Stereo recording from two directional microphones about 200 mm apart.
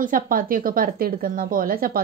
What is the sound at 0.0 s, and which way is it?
Speech, 45° right (ahead or behind).